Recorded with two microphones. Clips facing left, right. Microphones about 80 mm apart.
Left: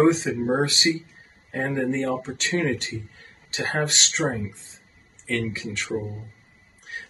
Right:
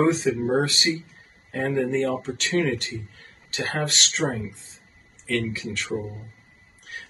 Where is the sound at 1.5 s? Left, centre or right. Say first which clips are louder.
Right 1 dB; left.